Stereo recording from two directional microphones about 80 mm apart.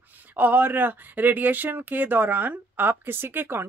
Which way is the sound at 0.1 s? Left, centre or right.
Right.